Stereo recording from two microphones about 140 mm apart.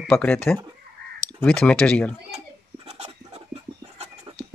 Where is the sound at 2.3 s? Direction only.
45° right (ahead or behind).